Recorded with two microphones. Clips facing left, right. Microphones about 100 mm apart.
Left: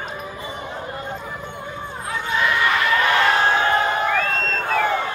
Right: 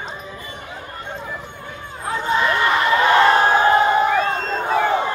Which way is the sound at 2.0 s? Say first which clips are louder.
Right 3 dB; 30° right (ahead or behind).